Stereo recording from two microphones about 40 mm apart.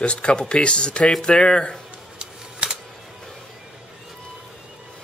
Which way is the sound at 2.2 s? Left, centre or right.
Right.